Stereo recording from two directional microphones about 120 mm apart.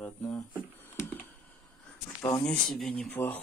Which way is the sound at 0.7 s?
20° left (ahead or behind).